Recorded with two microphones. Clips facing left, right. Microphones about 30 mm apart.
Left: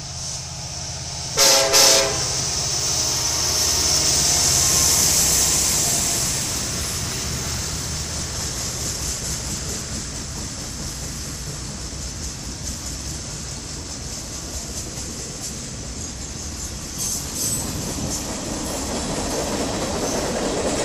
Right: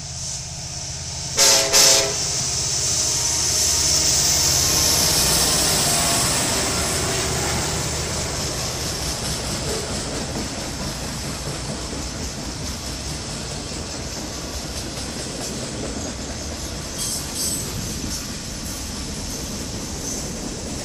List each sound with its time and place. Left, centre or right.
1.3 s train: centre
3.1 s vehicle: centre; by 7.9 s right
9.5 s train: right
18.9 s train: left